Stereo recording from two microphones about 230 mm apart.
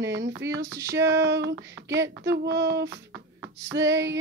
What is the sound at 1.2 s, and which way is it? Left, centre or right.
Speech, right.